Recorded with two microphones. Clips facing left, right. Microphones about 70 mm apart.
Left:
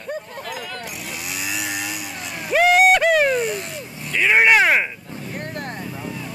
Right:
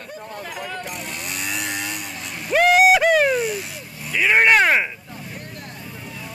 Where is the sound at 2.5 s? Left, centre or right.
Centre.